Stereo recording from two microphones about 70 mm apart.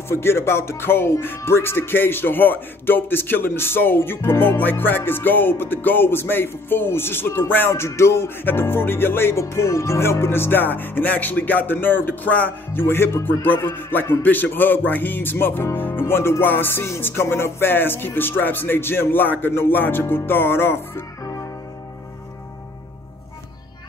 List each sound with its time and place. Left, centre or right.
0.1 s speech: left
12.7 s speech: left